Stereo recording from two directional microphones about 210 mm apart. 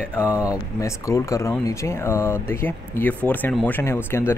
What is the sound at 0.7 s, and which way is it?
Speech, 15° left (ahead or behind).